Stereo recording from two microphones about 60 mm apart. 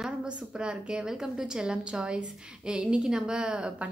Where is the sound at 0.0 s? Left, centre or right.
Centre.